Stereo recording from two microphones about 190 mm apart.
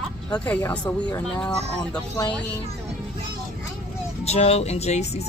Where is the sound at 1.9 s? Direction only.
20° left (ahead or behind).